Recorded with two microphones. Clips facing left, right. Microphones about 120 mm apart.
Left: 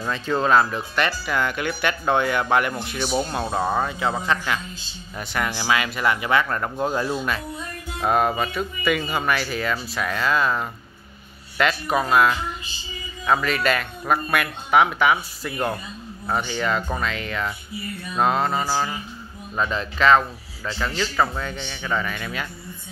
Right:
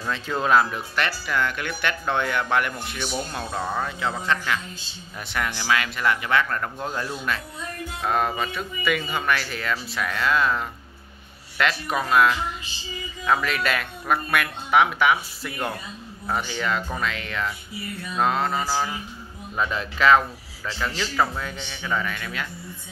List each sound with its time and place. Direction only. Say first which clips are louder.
0.1 s speech: left 2 dB; centre (ahead or behind)
3.0 s speech: left 6 dB; 30° left (ahead or behind)
3.8 s speech: left 3 dB; 15° left (ahead or behind)